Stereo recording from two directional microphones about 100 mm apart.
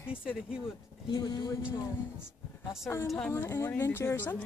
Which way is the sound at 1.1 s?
45° left (ahead or behind).